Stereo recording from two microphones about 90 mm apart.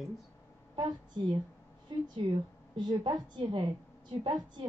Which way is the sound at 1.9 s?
60° right (ahead or behind).